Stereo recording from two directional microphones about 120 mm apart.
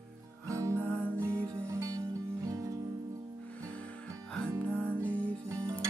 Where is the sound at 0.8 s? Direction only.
15° left (ahead or behind).